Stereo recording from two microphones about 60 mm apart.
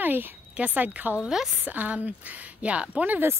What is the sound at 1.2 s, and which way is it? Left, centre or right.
Speech, centre.